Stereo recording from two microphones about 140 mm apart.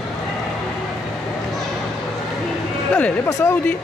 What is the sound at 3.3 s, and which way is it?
Speech, 20° left (ahead or behind).